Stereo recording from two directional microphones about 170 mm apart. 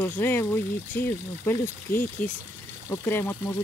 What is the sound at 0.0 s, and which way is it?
Speech, 10° left (ahead or behind).